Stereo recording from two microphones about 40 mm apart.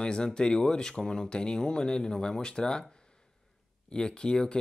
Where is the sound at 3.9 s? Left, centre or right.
Left.